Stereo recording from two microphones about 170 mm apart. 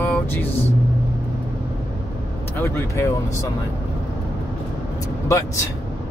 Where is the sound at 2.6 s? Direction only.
15° left (ahead or behind).